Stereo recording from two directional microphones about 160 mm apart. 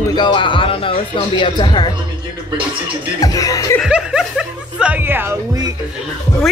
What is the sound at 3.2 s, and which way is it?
Speech, 20° left (ahead or behind).